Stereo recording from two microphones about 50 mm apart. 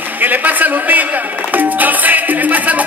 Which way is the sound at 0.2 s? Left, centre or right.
Right.